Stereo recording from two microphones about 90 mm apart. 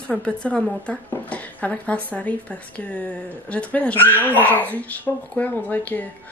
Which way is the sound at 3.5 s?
15° left (ahead or behind).